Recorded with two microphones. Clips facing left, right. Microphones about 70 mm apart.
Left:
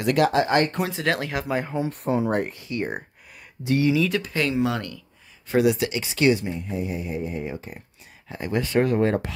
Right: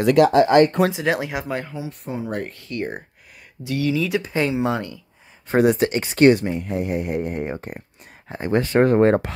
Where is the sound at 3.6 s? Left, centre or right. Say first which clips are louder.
Left 2 dB; left.